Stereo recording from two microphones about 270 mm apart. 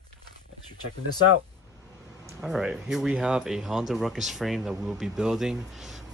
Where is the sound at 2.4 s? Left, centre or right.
Centre.